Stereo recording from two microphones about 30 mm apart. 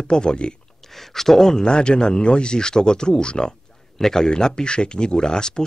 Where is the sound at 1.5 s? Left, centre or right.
Left.